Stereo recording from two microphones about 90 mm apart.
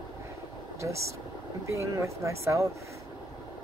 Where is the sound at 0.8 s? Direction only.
35° right (ahead or behind).